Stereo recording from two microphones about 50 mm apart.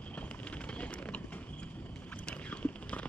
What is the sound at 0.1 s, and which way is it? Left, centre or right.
Vehicle, left.